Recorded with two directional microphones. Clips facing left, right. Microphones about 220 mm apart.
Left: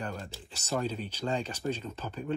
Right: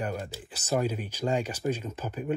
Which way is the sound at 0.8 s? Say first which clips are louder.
Right 4 dB; 10° right (ahead or behind).